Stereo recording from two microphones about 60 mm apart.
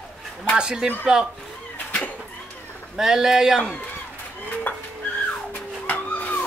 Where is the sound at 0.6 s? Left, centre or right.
Centre.